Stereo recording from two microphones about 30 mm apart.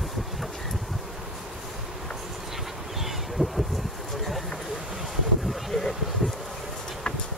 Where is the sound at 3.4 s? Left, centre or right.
Right.